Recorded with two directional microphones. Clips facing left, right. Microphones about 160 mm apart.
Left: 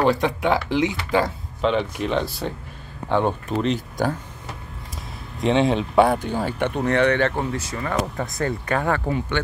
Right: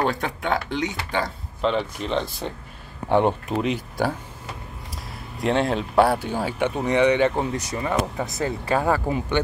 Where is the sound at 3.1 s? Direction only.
15° right (ahead or behind).